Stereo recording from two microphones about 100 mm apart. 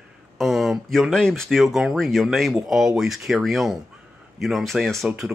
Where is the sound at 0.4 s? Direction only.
Centre (ahead or behind).